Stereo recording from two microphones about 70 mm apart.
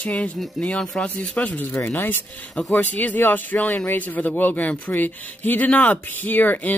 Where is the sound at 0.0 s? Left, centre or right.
Centre.